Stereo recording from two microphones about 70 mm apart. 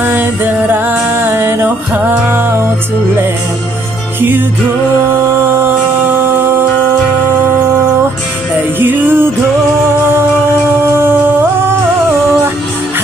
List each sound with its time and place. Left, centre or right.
0.0 s music: right
5.1 s music: right
8.7 s music: right
10.8 s music: right